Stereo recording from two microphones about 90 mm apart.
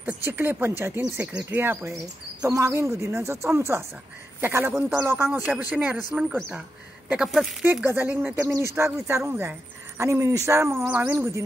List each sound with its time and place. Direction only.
0.0 s speech: 25° right (ahead or behind)
7.2 s speech: centre (ahead or behind)
7.6 s speech: 20° right (ahead or behind)
8.5 s speech: 30° right (ahead or behind)
9.9 s speech: 30° right (ahead or behind)